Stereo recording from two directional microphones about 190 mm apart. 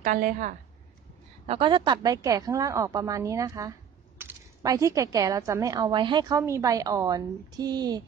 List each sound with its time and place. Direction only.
0.0 s a woman's voice: 45° right (ahead or behind)
1.4 s speech: 30° right (ahead or behind)